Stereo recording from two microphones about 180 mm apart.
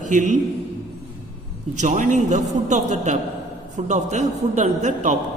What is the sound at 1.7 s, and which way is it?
A man's voice, 45° right (ahead or behind).